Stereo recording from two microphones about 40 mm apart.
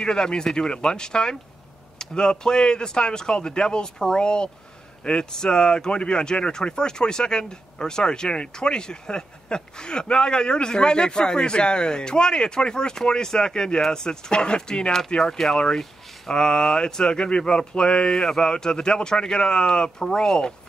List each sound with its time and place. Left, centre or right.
0.0 s speech: centre
15.3 s speech: centre